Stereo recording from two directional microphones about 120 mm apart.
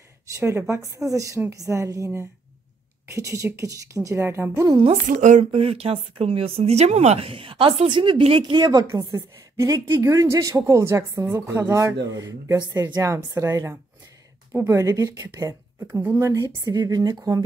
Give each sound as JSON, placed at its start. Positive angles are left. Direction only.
{"t": 0.3, "sound": "a woman's voice", "side_deg": -25}
{"t": 5.0, "sound": "speech", "side_deg": -90}
{"t": 5.4, "sound": "a woman's voice", "side_deg": -55}
{"t": 15.9, "sound": "a woman's voice", "side_deg": -15}